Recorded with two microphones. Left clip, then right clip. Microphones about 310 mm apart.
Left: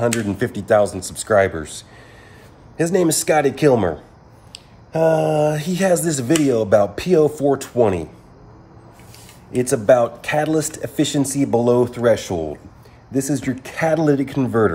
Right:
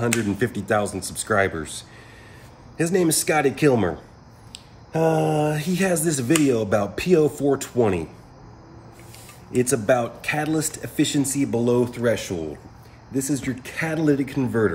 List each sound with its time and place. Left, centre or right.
0.2 s speech: centre
9.6 s speech: centre